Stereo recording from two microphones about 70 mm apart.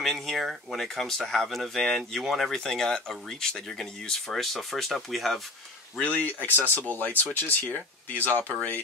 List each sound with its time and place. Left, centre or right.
0.0 s speech: centre
5.9 s speech: left
6.5 s speech: right
6.9 s speech: left